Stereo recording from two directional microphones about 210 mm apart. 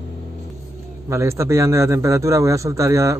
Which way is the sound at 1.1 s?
15° right (ahead or behind).